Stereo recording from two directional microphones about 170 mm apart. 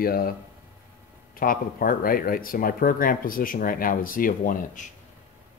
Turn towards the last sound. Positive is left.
turn(degrees=55)  # may be behind; listen again after turning